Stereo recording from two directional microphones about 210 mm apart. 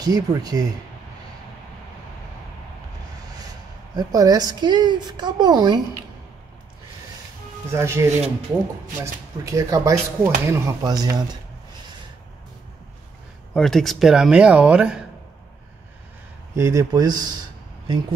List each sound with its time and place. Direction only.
0.0 s a woman's voice: 20° right (ahead or behind)
3.9 s a woman's voice: 15° right (ahead or behind)
7.7 s speech: 15° right (ahead or behind)
13.5 s speech: centre (ahead or behind)
16.5 s speech: 15° right (ahead or behind)